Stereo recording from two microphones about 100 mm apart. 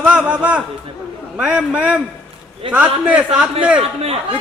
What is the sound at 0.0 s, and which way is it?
A man's voice, 15° right (ahead or behind).